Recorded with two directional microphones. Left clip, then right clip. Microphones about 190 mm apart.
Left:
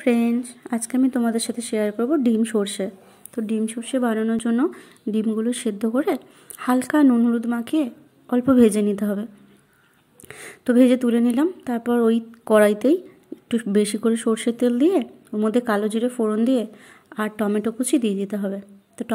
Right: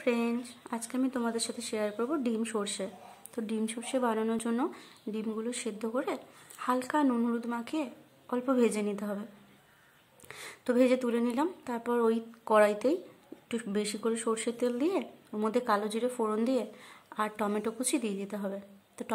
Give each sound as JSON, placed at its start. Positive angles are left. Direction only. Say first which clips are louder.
{"t": 0.0, "sound": "speech", "louder": "left 9 dB", "side_deg": 20}
{"t": 10.2, "sound": "speech", "louder": "left 8 dB", "side_deg": 20}